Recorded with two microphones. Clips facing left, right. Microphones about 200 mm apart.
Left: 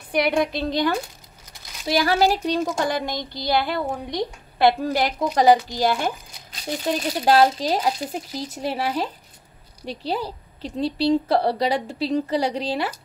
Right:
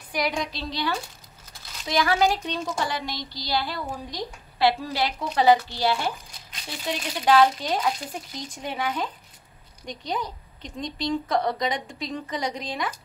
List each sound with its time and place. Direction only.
0.1 s a woman's voice: 60° left (ahead or behind)
2.0 s a woman's voice: 35° left (ahead or behind)